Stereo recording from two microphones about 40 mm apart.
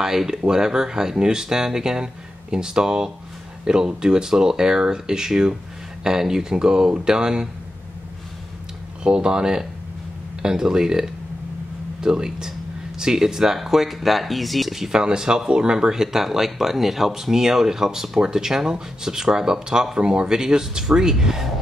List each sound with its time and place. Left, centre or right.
0.0 s speech: centre
9.0 s speech: right; by 14.8 s centre
14.8 s speech: centre